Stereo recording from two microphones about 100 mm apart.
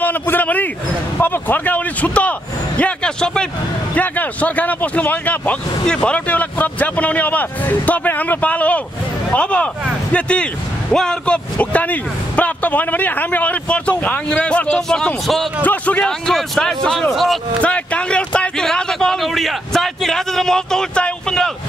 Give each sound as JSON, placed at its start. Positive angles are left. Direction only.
{"t": 0.0, "sound": "a man's voice", "side_deg": 15}
{"t": 15.6, "sound": "a man's voice", "side_deg": 15}
{"t": 17.6, "sound": "a man's voice", "side_deg": 15}